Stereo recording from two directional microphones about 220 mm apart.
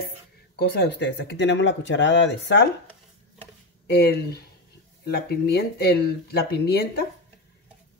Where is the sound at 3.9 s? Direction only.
45° left (ahead or behind).